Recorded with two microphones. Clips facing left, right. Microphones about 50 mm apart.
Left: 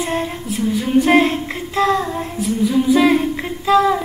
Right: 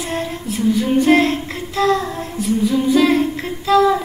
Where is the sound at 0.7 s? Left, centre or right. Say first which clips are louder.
Left 1 dB; centre.